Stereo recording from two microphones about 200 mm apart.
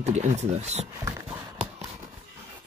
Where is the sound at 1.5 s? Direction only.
30° right (ahead or behind).